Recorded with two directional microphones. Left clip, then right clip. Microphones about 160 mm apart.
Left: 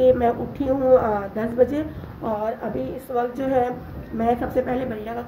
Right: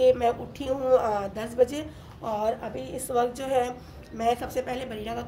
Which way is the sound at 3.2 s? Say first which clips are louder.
Left 3 dB; centre (ahead or behind).